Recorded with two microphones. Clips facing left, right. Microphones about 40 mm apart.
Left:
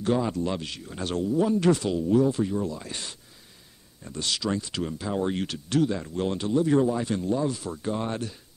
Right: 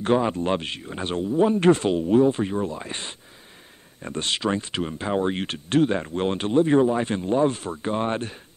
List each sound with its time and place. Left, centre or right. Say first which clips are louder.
0.0 s speech: right 4 dB; right